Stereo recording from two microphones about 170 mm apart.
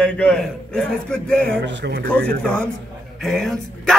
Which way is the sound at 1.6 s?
75° right (ahead or behind).